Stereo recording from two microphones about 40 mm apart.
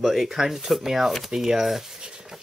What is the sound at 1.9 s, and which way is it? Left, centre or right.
Rub, centre.